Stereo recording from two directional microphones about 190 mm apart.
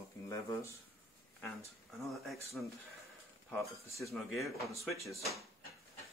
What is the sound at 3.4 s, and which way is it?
Speech, centre (ahead or behind).